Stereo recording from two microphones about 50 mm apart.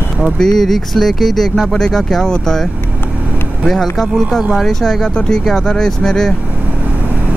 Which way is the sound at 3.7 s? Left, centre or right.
Centre.